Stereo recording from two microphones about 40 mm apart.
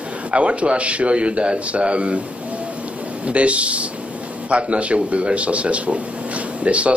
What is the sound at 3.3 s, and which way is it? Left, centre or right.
Speech, right.